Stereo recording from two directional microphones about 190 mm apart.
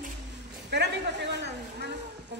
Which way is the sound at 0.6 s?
65° right (ahead or behind).